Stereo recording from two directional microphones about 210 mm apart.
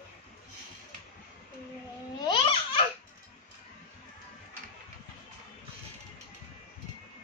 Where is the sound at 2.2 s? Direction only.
25° left (ahead or behind).